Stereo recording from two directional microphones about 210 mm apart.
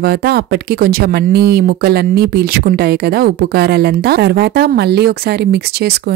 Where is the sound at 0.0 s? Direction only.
50° right (ahead or behind).